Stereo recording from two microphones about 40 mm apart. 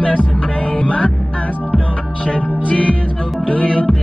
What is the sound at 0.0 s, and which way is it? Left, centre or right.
Music, left.